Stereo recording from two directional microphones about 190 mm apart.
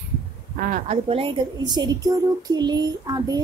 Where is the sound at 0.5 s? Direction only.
45° right (ahead or behind).